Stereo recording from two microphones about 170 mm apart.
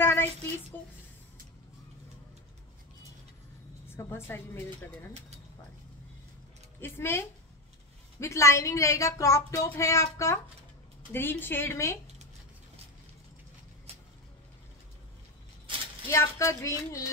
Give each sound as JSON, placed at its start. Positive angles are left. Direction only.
{"t": 0.0, "sound": "speech", "side_deg": 15}
{"t": 3.9, "sound": "speech", "side_deg": 15}
{"t": 6.8, "sound": "speech", "side_deg": 15}
{"t": 16.1, "sound": "speech", "side_deg": 15}